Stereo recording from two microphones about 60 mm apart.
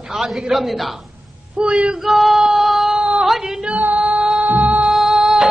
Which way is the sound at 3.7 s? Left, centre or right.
Right.